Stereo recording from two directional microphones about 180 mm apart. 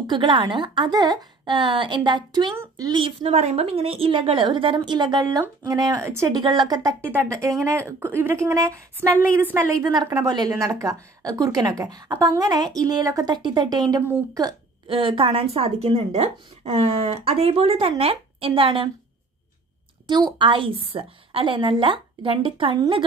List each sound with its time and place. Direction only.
0.0 s a woman's voice: 25° right (ahead or behind)
2.5 s a woman's voice: 15° right (ahead or behind)
2.9 s a woman's voice: 25° right (ahead or behind); by 9.6 s 10° right (ahead or behind)
9.8 s a woman's voice: 20° right (ahead or behind)
20.1 s a woman's voice: 25° right (ahead or behind)